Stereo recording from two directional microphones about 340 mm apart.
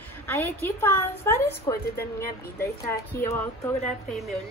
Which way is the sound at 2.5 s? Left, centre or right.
Centre.